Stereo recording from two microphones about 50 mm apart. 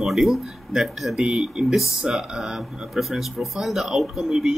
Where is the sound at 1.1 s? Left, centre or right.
Centre.